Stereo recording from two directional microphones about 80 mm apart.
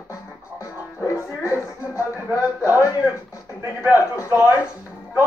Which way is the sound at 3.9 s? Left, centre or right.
Left.